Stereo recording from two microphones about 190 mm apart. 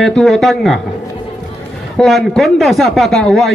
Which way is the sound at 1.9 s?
Centre (ahead or behind).